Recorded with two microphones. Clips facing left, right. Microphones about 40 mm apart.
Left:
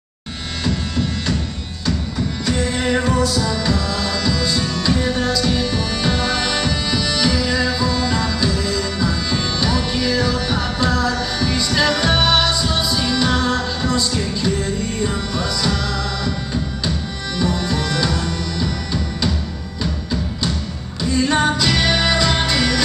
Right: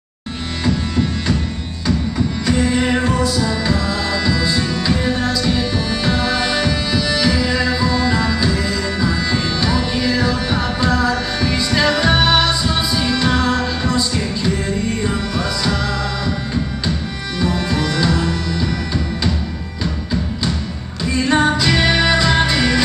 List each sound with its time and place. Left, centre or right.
0.7 s music: centre
2.4 s music: centre
17.4 s music: centre